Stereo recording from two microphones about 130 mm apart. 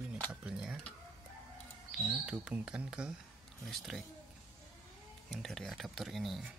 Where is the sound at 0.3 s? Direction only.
10° right (ahead or behind).